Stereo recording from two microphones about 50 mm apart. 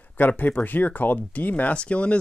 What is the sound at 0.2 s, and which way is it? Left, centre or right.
Speech, left.